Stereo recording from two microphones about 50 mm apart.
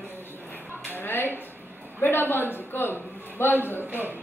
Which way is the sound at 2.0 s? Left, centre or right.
Left.